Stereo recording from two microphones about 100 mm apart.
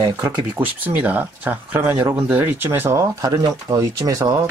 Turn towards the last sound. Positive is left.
turn(degrees=-35)  # may be behind; listen again after turning